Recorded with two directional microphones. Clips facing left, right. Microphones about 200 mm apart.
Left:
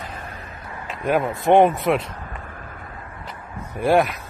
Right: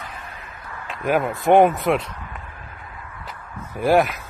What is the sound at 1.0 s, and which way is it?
Speech, centre (ahead or behind).